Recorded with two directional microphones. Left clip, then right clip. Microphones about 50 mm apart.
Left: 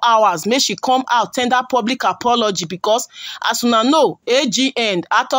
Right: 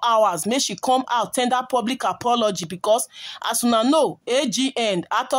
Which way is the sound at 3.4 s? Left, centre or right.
Right.